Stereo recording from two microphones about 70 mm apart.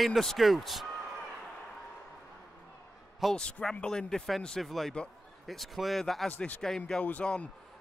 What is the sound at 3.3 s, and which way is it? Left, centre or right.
A man's voice, centre.